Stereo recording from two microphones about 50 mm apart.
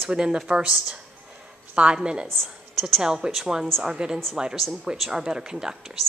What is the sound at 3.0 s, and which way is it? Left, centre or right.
Speech, centre.